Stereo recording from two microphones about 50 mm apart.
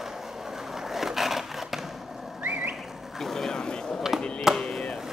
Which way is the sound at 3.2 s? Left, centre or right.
Centre.